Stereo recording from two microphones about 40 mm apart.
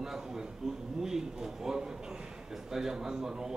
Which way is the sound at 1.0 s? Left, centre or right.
Centre.